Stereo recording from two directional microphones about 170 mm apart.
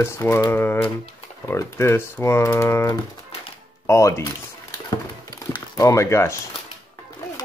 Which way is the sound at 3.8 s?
15° left (ahead or behind).